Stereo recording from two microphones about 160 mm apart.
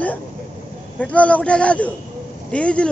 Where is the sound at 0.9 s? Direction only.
10° left (ahead or behind).